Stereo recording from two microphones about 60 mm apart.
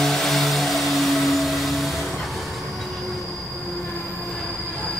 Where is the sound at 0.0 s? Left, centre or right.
Centre.